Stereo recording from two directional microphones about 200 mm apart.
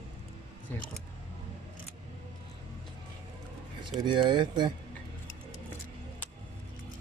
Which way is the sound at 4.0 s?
25° right (ahead or behind).